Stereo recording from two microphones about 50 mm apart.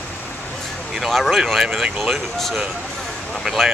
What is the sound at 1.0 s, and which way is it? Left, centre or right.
Speech, centre.